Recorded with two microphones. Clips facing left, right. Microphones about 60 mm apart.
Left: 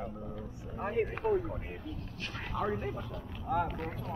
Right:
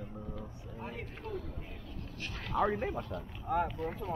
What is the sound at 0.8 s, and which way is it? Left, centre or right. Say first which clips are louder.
Speech: left 12 dB; left.